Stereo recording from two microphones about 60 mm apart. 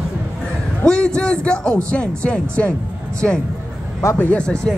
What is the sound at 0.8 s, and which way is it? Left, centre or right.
A man's voice, centre.